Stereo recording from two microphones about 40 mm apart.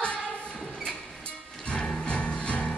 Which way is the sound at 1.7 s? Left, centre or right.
Centre.